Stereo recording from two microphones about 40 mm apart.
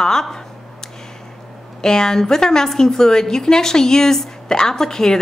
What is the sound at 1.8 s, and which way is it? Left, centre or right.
A woman's voice, centre.